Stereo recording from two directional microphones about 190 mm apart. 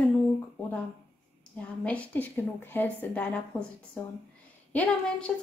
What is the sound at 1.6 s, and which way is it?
Speech, 10° left (ahead or behind).